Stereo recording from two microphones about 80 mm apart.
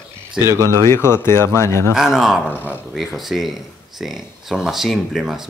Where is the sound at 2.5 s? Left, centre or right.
Left.